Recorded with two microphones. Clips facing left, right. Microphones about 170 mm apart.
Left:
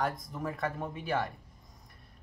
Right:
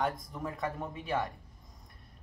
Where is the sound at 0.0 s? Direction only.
Centre (ahead or behind).